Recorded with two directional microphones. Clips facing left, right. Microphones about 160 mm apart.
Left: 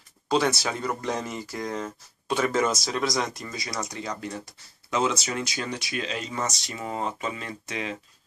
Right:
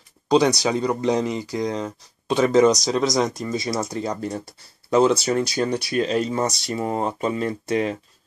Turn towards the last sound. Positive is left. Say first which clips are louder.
# right 10 dB
turn(degrees=-45)  # may be behind; listen again after turning